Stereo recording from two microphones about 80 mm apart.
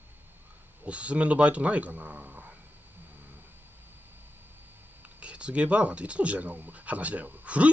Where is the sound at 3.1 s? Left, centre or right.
Right.